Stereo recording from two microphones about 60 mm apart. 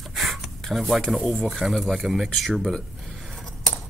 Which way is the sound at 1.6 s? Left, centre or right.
Centre.